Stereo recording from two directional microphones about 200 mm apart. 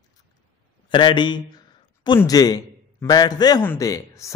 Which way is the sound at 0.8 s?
25° left (ahead or behind).